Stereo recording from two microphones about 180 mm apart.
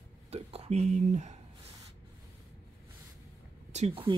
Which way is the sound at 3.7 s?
35° right (ahead or behind).